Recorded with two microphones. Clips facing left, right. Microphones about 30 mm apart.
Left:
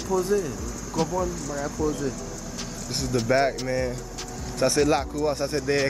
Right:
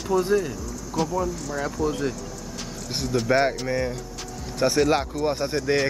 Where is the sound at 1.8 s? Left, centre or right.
Right.